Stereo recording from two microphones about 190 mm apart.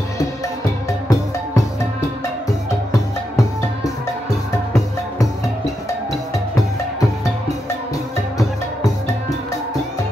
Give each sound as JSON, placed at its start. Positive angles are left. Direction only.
{"t": 2.9, "sound": "music", "side_deg": 15}